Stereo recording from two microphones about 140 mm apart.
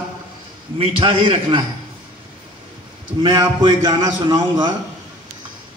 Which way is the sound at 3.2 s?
30° right (ahead or behind).